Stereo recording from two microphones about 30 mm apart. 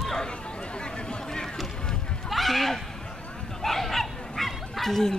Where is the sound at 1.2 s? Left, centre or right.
Centre.